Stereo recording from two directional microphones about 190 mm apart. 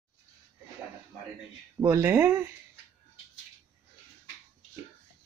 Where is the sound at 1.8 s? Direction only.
15° right (ahead or behind).